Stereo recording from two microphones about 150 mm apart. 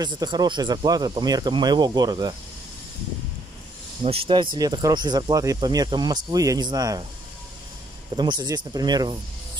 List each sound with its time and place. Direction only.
0.0 s speech: 30° right (ahead or behind)
4.0 s speech: 40° right (ahead or behind)
4.6 s speech: 25° right (ahead or behind)
8.2 s speech: 30° right (ahead or behind)